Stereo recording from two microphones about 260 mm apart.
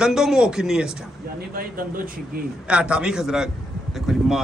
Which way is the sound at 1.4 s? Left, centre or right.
Right.